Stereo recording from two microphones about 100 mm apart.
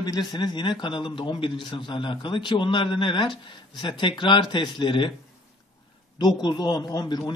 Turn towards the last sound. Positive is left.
turn(degrees=40)  # may be behind; listen again after turning